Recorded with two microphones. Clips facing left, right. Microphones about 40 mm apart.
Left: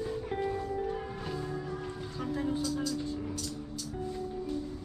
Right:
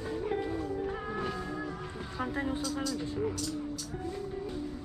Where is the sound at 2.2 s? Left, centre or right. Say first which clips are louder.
Left 1 dB; right.